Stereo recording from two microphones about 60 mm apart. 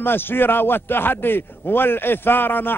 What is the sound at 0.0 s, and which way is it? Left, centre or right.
A man's voice, left.